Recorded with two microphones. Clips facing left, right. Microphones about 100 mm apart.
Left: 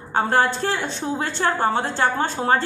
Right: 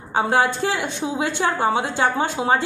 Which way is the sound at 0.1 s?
10° right (ahead or behind).